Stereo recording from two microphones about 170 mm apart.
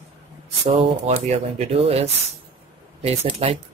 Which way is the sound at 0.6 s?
35° right (ahead or behind).